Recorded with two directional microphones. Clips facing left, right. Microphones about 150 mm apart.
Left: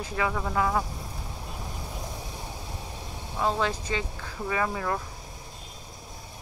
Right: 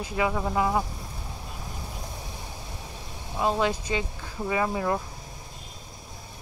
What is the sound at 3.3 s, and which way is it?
Speech, 15° right (ahead or behind).